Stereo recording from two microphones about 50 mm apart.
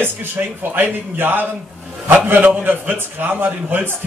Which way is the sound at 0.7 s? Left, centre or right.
Right.